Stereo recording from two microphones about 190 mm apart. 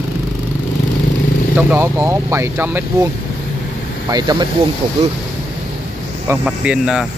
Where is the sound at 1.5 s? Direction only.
15° right (ahead or behind).